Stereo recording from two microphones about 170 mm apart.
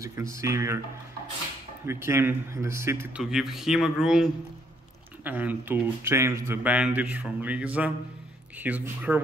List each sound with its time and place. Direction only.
0.0 s speech: 15° right (ahead or behind)
1.9 s speech: 15° right (ahead or behind)